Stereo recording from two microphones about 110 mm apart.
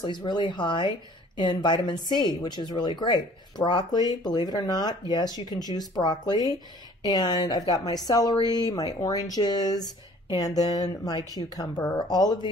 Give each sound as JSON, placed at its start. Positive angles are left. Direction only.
{"t": 0.0, "sound": "speech", "side_deg": 40}